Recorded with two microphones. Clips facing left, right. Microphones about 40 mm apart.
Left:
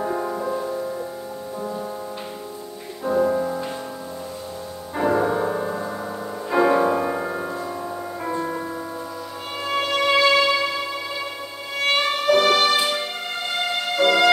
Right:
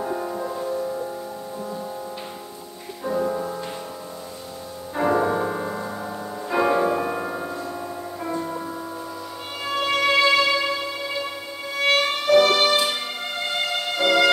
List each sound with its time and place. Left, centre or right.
0.0 s music: centre
3.0 s music: centre
4.9 s music: centre
8.4 s music: left
9.8 s music: centre
11.8 s violin: centre
13.5 s music: centre